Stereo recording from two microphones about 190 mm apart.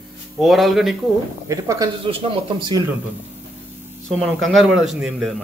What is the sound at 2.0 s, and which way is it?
Speech, 30° right (ahead or behind).